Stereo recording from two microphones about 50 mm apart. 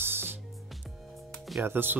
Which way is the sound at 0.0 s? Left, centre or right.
Right.